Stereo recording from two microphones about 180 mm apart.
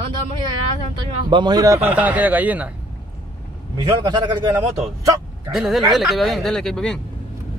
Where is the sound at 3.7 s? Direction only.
25° right (ahead or behind).